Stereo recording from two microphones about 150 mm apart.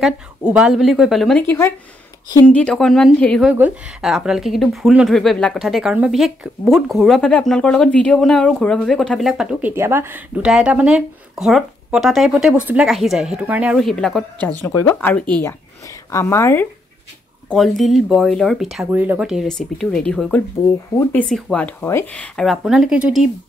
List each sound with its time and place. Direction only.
0.0 s speech: 5° right (ahead or behind)
2.5 s speech: 5° left (ahead or behind)
3.4 s speech: 10° right (ahead or behind)
13.8 s speech: 5° left (ahead or behind)
15.9 s speech: 20° left (ahead or behind)
17.5 s speech: centre (ahead or behind)
18.9 s speech: 10° right (ahead or behind)